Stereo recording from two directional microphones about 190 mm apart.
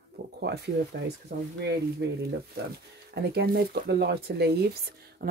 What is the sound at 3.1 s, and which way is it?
Speech, 60° right (ahead or behind).